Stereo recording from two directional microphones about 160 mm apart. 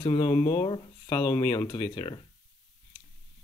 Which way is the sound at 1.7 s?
30° left (ahead or behind).